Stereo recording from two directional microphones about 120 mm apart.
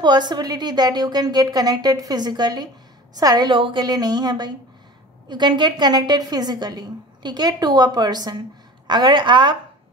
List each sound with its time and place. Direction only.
0.0 s a woman's voice: 35° right (ahead or behind)